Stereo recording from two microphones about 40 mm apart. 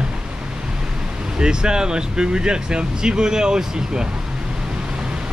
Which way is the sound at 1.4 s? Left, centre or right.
Centre.